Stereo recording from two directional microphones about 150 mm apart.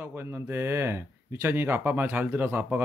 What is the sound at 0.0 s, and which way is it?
Speech, 15° right (ahead or behind).